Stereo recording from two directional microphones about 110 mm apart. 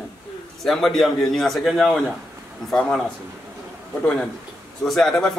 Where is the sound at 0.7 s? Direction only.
Centre (ahead or behind).